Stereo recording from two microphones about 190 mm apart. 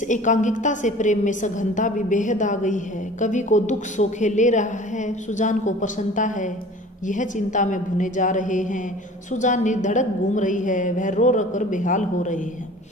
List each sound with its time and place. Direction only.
0.1 s a woman's voice: 40° left (ahead or behind)